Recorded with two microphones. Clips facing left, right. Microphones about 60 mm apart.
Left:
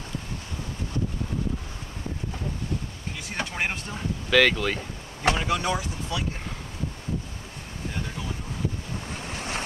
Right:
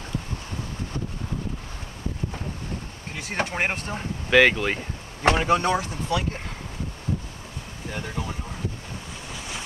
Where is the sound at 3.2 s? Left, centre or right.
Right.